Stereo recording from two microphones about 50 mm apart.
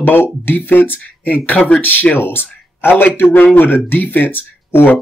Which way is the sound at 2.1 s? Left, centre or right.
Left.